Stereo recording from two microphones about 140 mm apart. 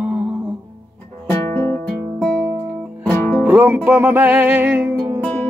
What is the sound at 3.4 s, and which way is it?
Speech, 10° right (ahead or behind).